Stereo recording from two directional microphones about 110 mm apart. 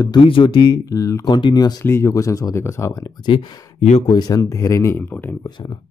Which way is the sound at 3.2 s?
50° left (ahead or behind).